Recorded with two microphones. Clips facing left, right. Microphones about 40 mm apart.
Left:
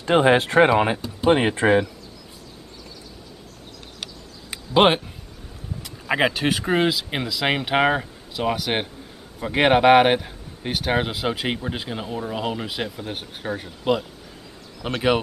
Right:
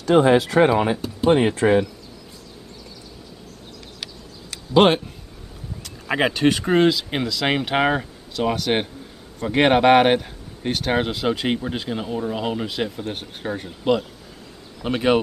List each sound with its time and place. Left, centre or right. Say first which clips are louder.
0.0 s speech: right 1 dB; left
4.5 s speech: right 1 dB; centre
14.8 s speech: right 3 dB; centre